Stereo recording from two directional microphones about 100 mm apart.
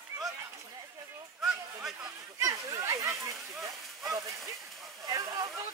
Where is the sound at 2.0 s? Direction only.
35° right (ahead or behind).